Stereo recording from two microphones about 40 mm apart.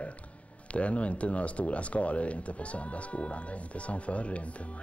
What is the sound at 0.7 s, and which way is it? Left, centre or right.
Speech, left.